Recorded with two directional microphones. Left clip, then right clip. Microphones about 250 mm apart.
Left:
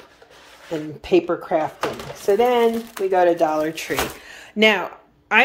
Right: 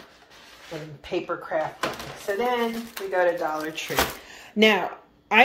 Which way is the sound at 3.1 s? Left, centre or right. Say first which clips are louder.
Left 6 dB; left.